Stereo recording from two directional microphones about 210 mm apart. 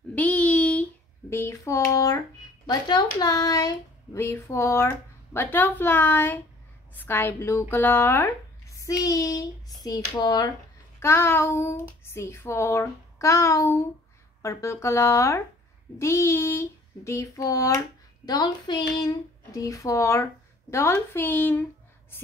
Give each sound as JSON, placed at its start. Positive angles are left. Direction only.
{"t": 0.1, "sound": "child singing", "side_deg": 5}
{"t": 1.3, "sound": "speech", "side_deg": 15}